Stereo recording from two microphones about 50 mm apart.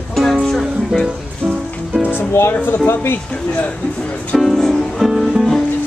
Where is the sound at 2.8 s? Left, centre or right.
Left.